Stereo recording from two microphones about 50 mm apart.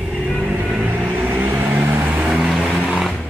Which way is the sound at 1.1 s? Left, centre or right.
Right.